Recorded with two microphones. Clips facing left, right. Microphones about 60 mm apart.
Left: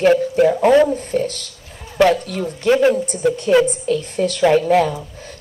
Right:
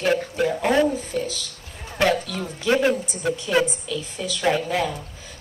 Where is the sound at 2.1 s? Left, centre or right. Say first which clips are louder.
Left 5 dB; left.